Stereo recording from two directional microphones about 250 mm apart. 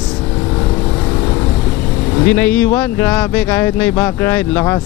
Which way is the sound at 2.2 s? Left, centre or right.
Centre.